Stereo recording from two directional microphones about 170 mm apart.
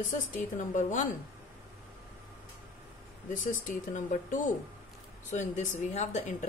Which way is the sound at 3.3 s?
50° left (ahead or behind).